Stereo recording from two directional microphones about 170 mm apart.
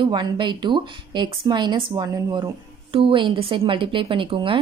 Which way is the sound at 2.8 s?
30° right (ahead or behind).